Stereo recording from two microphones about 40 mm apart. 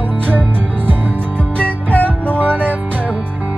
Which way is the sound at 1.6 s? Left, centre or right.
Left.